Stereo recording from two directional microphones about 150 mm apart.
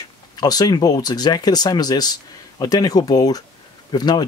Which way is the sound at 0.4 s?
25° left (ahead or behind).